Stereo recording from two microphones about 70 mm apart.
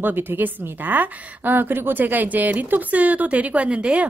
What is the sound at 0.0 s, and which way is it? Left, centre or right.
A woman's voice, right.